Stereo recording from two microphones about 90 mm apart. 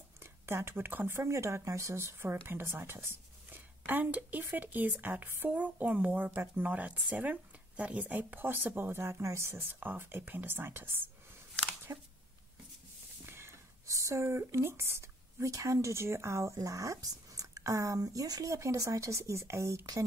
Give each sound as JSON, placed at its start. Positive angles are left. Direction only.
{"t": 0.2, "sound": "speech", "side_deg": -30}
{"t": 11.9, "sound": "speech", "side_deg": -35}
{"t": 13.2, "sound": "speech", "side_deg": -30}